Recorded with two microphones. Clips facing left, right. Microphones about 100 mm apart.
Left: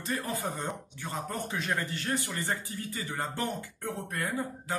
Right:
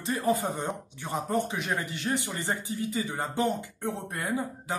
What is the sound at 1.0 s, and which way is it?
Speech, 20° right (ahead or behind).